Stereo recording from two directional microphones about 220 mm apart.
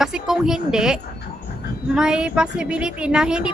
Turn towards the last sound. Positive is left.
turn(degrees=-5)  # may be behind; listen again after turning